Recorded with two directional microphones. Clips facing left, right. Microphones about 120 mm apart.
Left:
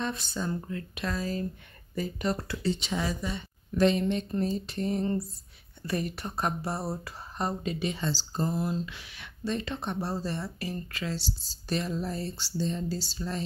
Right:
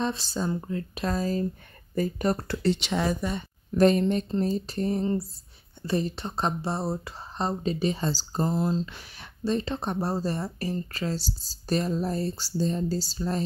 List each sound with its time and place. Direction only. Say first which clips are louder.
0.0 s speech: right 4 dB; 30° right (ahead or behind); by 2.5 s 50° right (ahead or behind)
2.5 s speech: right 4 dB; 75° right (ahead or behind); by 4.9 s 40° right (ahead or behind)
4.9 s speech: right 2 dB; 25° right (ahead or behind); by 8.5 s 45° right (ahead or behind)
8.5 s speech: right 5 dB; 30° right (ahead or behind)